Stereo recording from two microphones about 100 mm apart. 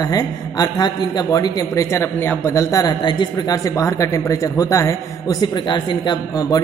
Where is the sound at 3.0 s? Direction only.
45° left (ahead or behind).